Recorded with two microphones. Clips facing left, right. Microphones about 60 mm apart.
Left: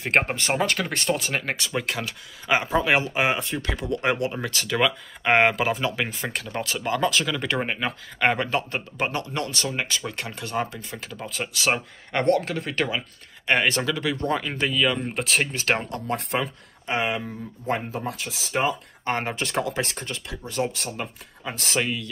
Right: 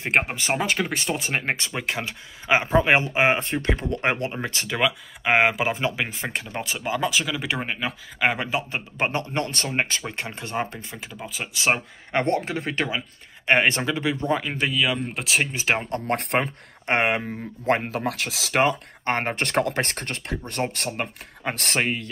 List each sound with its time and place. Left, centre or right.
0.1 s speech: centre
1.2 s speech: right
4.7 s speech: centre
5.7 s speech: right; by 8.4 s centre
8.4 s speech: centre
8.9 s speech: right; by 11.5 s centre
11.5 s speech: right; by 15.5 s centre
15.5 s speech: centre
16.1 s speech: right
17.6 s speech: right
19.0 s speech: right